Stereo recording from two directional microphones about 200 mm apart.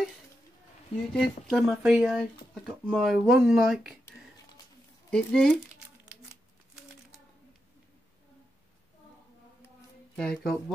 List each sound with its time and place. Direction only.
1.1 s speech: centre (ahead or behind)
5.1 s speech: 5° left (ahead or behind)
10.1 s speech: 5° left (ahead or behind)